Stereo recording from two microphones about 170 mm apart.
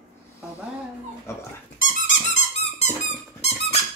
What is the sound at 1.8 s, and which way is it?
Squeak, 50° left (ahead or behind).